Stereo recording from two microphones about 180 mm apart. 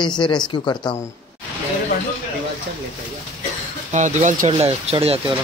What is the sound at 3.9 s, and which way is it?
Speech, 40° right (ahead or behind).